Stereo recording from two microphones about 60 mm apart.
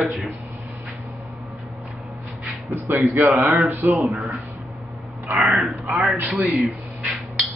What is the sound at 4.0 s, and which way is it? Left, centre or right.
Speech, centre.